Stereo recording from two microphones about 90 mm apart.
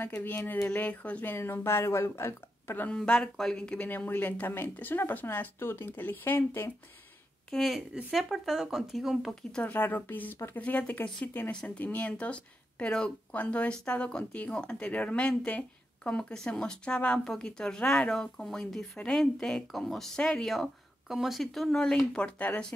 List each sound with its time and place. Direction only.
0.0 s speech: 20° left (ahead or behind)
2.9 s speech: 10° left (ahead or behind)
7.5 s speech: centre (ahead or behind)
9.6 s speech: 20° left (ahead or behind)